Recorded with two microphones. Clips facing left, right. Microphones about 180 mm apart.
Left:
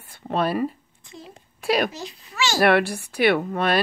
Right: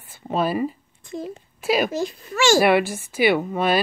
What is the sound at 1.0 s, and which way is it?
Speech, 50° right (ahead or behind).